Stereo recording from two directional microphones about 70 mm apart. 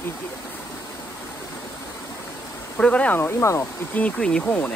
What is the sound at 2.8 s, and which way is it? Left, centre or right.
Speech, centre.